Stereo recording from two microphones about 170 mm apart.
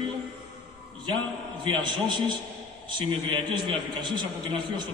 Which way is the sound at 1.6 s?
25° right (ahead or behind).